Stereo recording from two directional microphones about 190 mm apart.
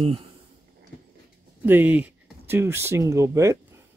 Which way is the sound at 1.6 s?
10° right (ahead or behind).